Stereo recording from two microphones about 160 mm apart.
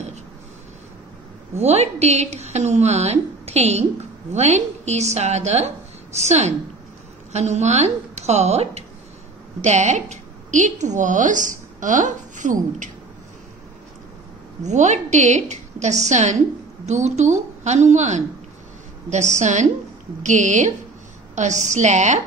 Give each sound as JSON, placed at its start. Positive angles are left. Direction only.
{"t": 1.5, "sound": "a woman's voice", "side_deg": -45}
{"t": 14.6, "sound": "a woman's voice", "side_deg": -45}